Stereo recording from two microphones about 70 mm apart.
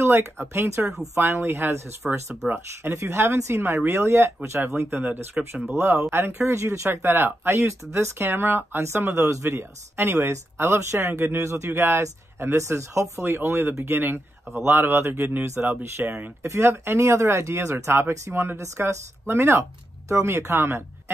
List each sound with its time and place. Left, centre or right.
0.0 s speech: right
5.4 s speech: centre
5.7 s speech: right
16.4 s speech: right